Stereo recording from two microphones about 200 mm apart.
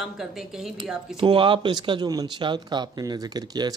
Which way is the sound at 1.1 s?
25° right (ahead or behind).